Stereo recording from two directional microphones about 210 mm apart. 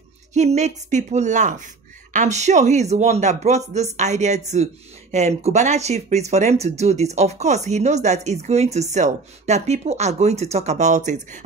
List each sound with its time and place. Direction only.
0.3 s speech: 35° right (ahead or behind)